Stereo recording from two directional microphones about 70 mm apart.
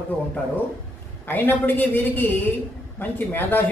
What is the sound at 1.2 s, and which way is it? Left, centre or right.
Speech, left.